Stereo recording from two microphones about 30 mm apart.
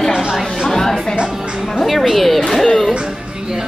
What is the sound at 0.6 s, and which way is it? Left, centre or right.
Music, centre.